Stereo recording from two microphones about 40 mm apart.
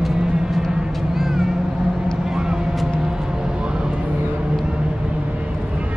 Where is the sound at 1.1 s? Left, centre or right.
Centre.